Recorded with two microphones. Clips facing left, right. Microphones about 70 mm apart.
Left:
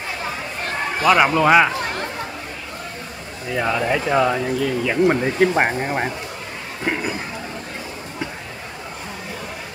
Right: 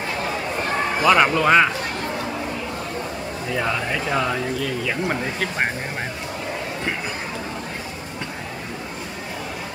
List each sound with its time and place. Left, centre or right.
1.0 s speech: centre
3.5 s speech: centre